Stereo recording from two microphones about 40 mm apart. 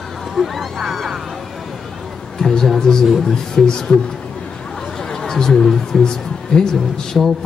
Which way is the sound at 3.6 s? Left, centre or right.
Left.